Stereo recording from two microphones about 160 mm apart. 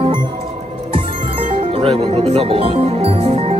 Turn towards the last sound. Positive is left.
turn(degrees=-40)  # may be behind; listen again after turning